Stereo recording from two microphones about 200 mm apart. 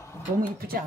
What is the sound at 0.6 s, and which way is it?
Speech, 50° right (ahead or behind).